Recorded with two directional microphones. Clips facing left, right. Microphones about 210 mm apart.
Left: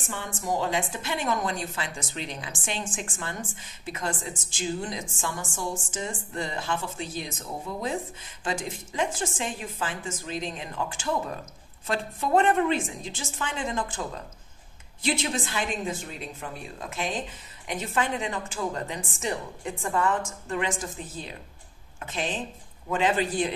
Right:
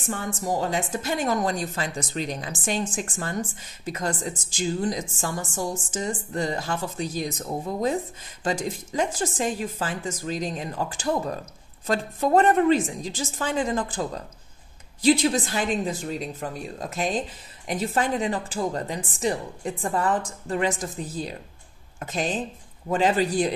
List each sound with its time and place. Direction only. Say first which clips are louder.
0.1 s a woman's voice: right 3 dB; 40° right (ahead or behind)